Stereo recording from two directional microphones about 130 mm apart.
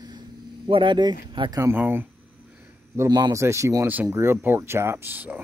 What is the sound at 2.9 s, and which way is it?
Speech, 30° right (ahead or behind).